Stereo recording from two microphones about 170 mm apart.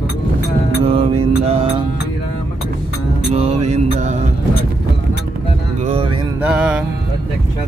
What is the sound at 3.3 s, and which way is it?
Mantra, 40° right (ahead or behind).